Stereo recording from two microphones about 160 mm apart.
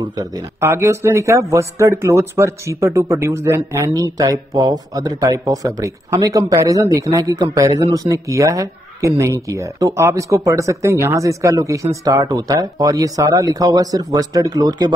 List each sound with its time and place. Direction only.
0.1 s speech: 25° right (ahead or behind)